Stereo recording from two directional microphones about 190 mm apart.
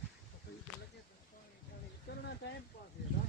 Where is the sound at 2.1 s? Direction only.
60° left (ahead or behind).